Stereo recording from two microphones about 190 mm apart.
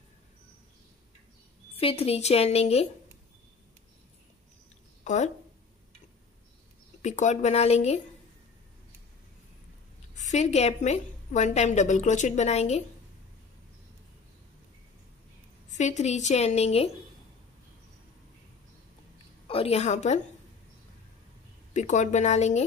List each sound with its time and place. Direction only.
1.8 s a woman's voice: 30° left (ahead or behind)
5.0 s speech: 40° left (ahead or behind)
7.0 s a woman's voice: 40° left (ahead or behind)
10.1 s a woman's voice: 40° left (ahead or behind)
15.7 s a woman's voice: 40° left (ahead or behind)
19.4 s a woman's voice: 30° left (ahead or behind)
21.7 s a woman's voice: 40° left (ahead or behind)